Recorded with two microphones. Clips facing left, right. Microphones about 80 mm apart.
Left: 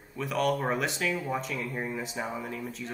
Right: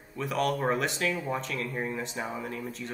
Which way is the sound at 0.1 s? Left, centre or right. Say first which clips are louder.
Left 1 dB; centre.